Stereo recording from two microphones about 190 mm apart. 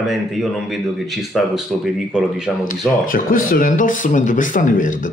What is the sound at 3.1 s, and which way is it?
Speech, 50° left (ahead or behind).